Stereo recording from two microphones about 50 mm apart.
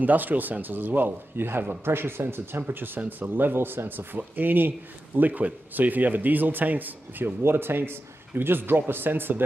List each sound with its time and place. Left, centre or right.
0.0 s a man's voice: right